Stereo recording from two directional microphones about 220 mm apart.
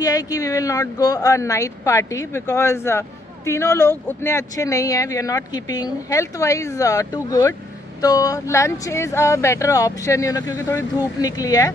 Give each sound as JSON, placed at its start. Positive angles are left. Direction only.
{"t": 0.0, "sound": "speech", "side_deg": 15}